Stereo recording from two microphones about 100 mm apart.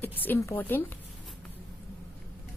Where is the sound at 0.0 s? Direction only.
20° left (ahead or behind).